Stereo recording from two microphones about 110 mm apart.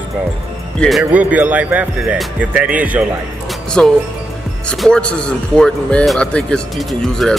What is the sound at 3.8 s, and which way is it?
Speech, 5° left (ahead or behind).